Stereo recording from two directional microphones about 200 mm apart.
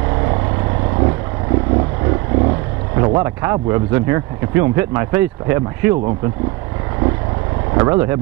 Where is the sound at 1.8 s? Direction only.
20° right (ahead or behind).